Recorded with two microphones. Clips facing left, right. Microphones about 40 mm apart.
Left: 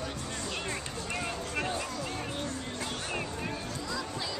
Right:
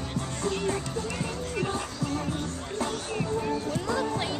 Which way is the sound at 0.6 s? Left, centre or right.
Centre.